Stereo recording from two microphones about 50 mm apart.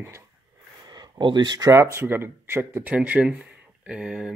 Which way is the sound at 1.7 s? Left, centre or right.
Right.